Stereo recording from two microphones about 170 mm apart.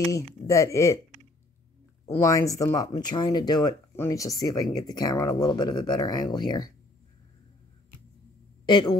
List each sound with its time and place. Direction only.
0.1 s speech: 20° left (ahead or behind)
2.1 s speech: 20° left (ahead or behind)
8.6 s speech: 25° left (ahead or behind)